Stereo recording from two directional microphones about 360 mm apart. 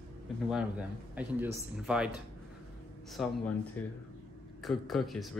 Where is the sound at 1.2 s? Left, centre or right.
Centre.